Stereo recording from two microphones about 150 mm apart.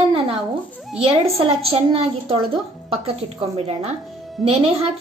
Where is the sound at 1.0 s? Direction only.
40° right (ahead or behind).